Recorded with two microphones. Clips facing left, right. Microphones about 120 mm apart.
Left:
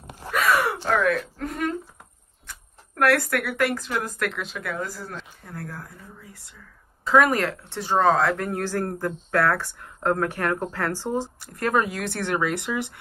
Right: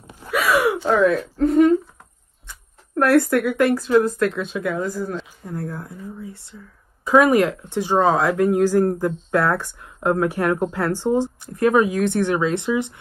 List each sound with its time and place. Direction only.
0.3 s a sound: 10° right (ahead or behind)
1.0 s a woman's voice: 30° right (ahead or behind)
3.0 s a woman's voice: 20° right (ahead or behind)
7.1 s speech: 15° right (ahead or behind)